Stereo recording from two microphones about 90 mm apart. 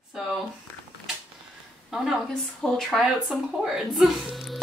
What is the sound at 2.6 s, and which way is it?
Speech, centre (ahead or behind).